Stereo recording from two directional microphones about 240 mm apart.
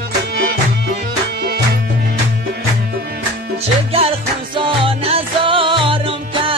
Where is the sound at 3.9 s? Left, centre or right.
Right.